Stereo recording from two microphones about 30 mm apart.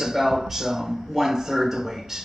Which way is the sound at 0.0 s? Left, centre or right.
Centre.